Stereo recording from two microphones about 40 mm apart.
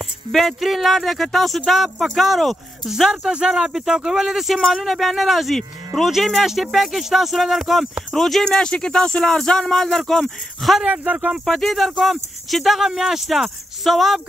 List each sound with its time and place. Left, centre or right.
0.3 s speech: centre
3.3 s speech: right
3.7 s speech: centre
8.5 s speech: left; by 14.2 s centre